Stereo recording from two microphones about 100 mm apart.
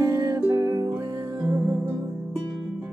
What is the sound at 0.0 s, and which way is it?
Music, 35° right (ahead or behind).